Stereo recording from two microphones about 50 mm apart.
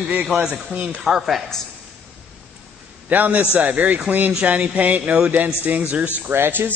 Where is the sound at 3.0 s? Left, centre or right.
Right.